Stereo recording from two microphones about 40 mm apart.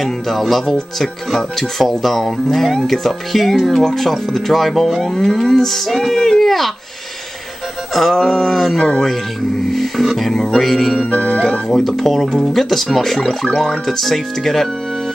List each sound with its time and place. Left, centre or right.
0.0 s speech: centre
7.9 s speech: centre
11.1 s music: left
11.7 s speech: centre